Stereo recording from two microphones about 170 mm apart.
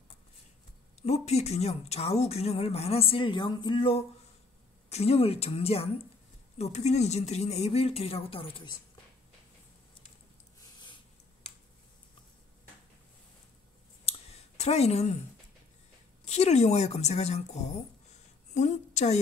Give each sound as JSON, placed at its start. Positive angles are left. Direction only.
{"t": 1.0, "sound": "speech", "side_deg": 40}
{"t": 14.0, "sound": "clicking", "side_deg": 40}
{"t": 16.3, "sound": "a woman's voice", "side_deg": 40}